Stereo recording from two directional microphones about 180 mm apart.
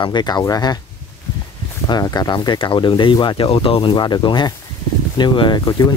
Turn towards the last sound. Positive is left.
turn(degrees=25)  # may be behind; listen again after turning